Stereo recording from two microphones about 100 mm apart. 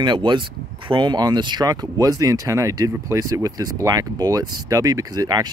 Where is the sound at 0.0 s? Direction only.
50° right (ahead or behind).